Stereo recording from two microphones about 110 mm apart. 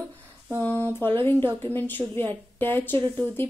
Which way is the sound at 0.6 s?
15° left (ahead or behind).